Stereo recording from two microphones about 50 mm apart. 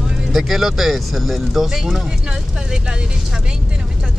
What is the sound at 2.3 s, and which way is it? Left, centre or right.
Speech, centre.